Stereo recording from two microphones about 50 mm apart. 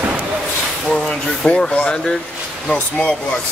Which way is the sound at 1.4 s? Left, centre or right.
Left.